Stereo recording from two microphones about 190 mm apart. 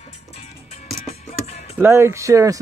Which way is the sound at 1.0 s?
35° left (ahead or behind).